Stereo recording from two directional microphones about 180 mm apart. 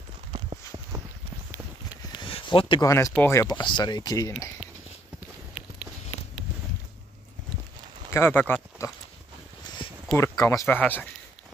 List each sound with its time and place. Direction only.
0.3 s clip-clop: 20° right (ahead or behind)
2.1 s a sound: 30° left (ahead or behind)
3.2 s speech: 15° left (ahead or behind)
8.1 s speech: 10° left (ahead or behind)
8.8 s a sound: 15° left (ahead or behind)
10.1 s speech: 15° left (ahead or behind)